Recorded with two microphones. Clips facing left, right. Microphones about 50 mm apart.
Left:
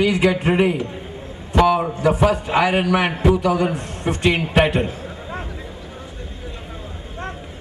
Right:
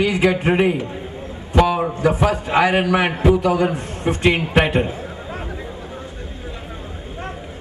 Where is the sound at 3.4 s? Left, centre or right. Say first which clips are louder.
Right 1 dB; right.